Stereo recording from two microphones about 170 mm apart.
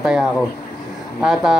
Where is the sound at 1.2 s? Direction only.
Centre (ahead or behind).